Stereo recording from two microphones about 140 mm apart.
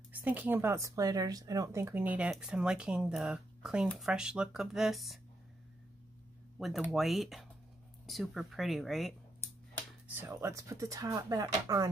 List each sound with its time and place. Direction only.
0.1 s speech: 10° right (ahead or behind)
6.6 s speech: centre (ahead or behind)
10.0 s speech: 15° right (ahead or behind)